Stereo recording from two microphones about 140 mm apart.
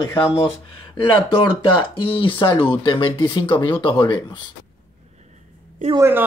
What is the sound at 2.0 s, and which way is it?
Speech, 35° left (ahead or behind).